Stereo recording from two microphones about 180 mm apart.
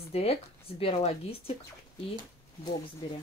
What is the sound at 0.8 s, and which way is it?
Speech, 35° left (ahead or behind).